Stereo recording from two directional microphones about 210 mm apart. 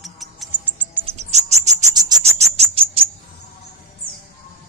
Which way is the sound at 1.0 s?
30° right (ahead or behind).